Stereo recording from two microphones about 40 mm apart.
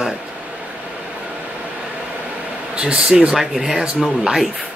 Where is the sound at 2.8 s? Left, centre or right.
Right.